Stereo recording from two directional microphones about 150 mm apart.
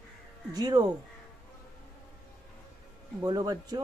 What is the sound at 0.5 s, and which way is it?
Speech, 25° right (ahead or behind).